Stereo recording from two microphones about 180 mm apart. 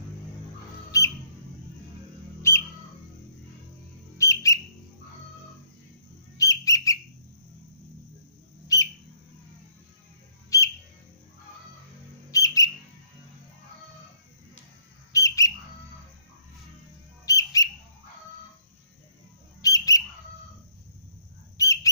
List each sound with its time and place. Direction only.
0.9 s bird: 20° left (ahead or behind)
4.2 s bird: 15° left (ahead or behind)
6.3 s bird: 20° left (ahead or behind)
8.7 s bird: 20° left (ahead or behind)
10.5 s bird: 20° left (ahead or behind)
12.3 s bird: 20° left (ahead or behind)
15.1 s bird: 15° left (ahead or behind)
17.3 s bird: 20° left (ahead or behind)
19.6 s bird: 20° left (ahead or behind)
21.6 s bird: 20° left (ahead or behind)